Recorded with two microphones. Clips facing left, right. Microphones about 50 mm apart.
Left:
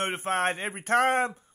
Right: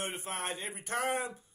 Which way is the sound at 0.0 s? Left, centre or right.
Left.